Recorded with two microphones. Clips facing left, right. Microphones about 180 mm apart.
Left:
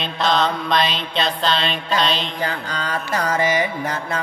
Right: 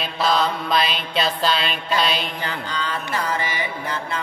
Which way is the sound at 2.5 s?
45° left (ahead or behind).